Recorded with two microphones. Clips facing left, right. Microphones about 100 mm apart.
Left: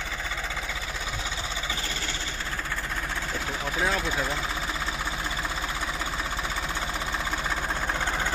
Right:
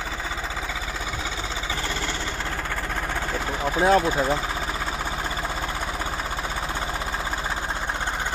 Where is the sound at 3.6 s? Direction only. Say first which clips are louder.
Right 10 dB; 45° right (ahead or behind).